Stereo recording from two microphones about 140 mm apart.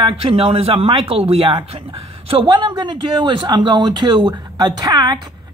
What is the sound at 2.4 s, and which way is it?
Speech, 30° right (ahead or behind).